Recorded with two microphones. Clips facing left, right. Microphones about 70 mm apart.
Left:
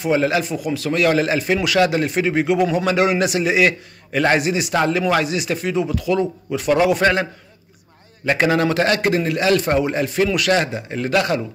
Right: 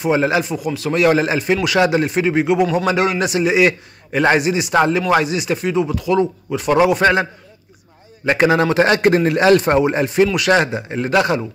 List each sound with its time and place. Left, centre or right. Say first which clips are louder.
0.0 s a man's voice: right 2 dB; centre
1.4 s a man's voice: right 1 dB; centre
8.3 s a man's voice: right 3 dB; centre
9.1 s a man's voice: right 5 dB; right; by 11.4 s centre